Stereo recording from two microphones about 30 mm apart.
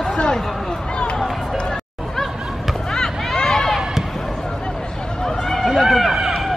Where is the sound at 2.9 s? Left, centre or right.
Centre.